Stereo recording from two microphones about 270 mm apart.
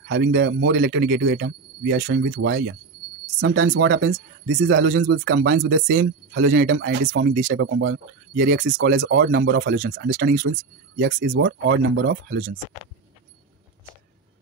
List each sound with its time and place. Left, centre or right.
0.0 s speech: right
10.0 s speech: right
10.5 s speech: right